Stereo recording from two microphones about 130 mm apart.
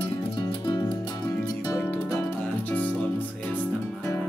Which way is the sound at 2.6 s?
15° left (ahead or behind).